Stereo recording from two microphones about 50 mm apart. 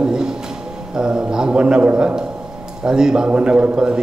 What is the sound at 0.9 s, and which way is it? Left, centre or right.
A man's voice, centre.